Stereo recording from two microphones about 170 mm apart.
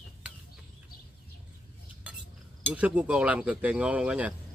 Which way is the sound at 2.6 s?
10° right (ahead or behind).